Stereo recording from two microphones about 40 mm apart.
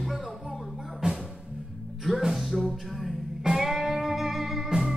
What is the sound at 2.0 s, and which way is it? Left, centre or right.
Music, centre.